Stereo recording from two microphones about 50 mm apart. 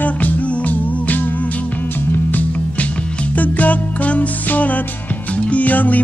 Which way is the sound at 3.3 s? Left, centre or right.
Left.